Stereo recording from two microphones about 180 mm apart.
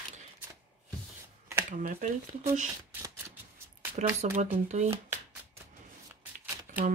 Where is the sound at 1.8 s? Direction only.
45° right (ahead or behind).